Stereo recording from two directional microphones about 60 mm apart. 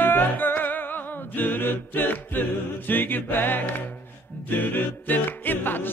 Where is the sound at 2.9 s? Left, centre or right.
Left.